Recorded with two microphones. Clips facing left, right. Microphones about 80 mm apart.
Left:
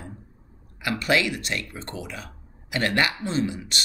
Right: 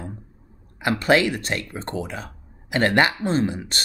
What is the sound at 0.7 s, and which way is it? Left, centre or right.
Speech, right.